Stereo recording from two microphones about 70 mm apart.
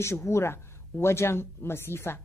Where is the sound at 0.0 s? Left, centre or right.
Left.